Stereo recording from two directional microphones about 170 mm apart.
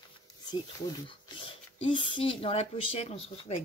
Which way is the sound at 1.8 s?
30° left (ahead or behind).